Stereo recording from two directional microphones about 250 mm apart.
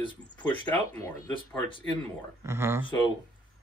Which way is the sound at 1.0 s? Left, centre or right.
Centre.